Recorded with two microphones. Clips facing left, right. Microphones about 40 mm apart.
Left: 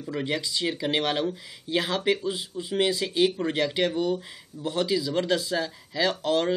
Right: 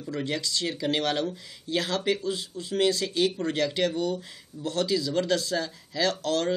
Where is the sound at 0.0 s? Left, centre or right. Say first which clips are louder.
Left 1 dB; centre.